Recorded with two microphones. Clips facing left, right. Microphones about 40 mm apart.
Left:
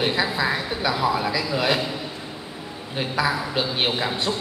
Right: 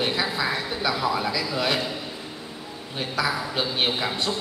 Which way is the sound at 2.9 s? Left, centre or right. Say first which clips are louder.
Left 3 dB; centre.